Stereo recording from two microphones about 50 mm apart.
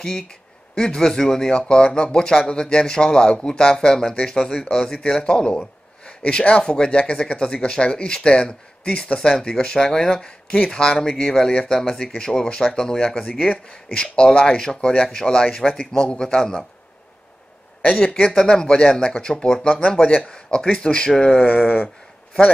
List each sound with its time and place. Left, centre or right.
0.0 s speech: centre
17.8 s speech: centre
21.4 s a sound: left